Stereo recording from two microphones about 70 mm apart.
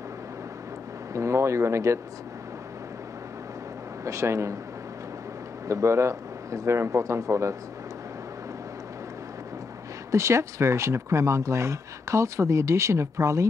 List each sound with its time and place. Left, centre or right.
1.1 s speech: right
4.0 s speech: right
5.7 s speech: right
10.1 s speech: right